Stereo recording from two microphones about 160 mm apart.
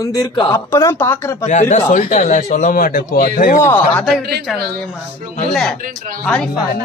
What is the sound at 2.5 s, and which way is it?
A man's voice, 60° left (ahead or behind).